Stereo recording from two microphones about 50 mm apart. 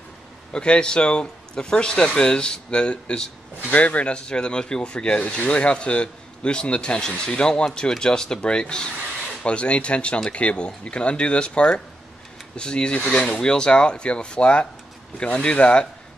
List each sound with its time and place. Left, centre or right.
0.5 s a man's voice: centre